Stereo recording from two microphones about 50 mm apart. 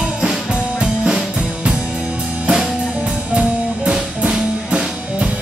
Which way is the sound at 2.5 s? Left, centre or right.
Centre.